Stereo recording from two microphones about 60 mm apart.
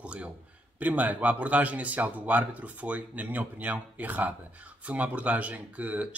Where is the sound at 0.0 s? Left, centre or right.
Right.